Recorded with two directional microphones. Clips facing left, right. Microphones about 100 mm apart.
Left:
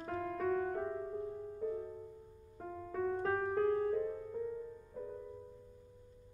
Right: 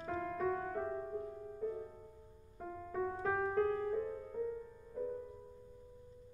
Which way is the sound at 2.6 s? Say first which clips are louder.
Even; 5° left (ahead or behind).